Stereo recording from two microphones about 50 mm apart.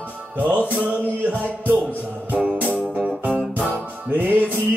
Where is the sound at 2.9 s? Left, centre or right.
Right.